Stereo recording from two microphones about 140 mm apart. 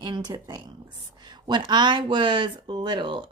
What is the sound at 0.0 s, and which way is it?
A woman's voice, 30° right (ahead or behind).